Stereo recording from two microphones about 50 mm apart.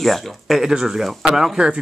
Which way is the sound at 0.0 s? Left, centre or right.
Centre.